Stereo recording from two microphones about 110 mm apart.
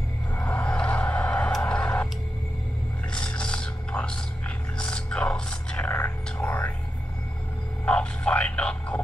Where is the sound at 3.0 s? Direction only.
10° left (ahead or behind).